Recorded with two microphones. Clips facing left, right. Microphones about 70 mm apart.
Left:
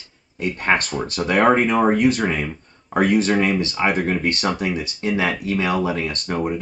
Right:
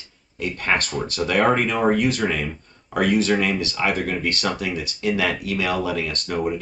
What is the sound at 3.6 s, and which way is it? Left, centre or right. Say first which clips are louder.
Speech: left 3 dB; left.